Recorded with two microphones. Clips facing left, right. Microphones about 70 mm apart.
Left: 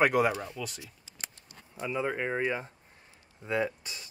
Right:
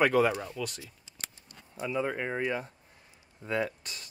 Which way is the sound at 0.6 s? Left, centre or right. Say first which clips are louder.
Right 2 dB; centre.